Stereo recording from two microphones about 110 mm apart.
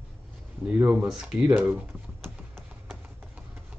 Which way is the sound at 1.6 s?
15° right (ahead or behind).